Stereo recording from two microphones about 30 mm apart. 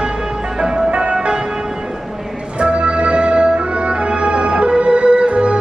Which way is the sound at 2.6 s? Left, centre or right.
Right.